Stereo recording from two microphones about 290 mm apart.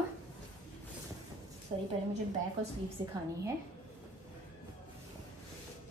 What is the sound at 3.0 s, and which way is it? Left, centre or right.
Speech, centre.